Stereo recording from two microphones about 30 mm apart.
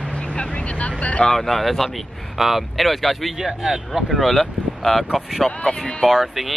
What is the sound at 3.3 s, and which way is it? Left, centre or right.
Speech, centre.